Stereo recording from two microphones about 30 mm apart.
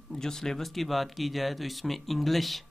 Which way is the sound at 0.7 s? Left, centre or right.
Centre.